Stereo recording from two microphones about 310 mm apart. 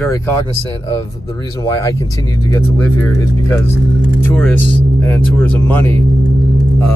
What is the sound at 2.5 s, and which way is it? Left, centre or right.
Speech, centre.